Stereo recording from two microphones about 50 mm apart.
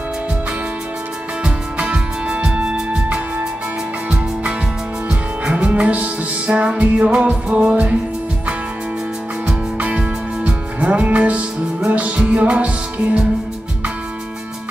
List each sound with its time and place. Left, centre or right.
1.4 s music: right
5.4 s music: right
9.8 s music: right